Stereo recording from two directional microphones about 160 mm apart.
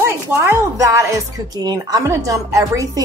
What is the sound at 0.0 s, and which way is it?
Speech, 15° right (ahead or behind).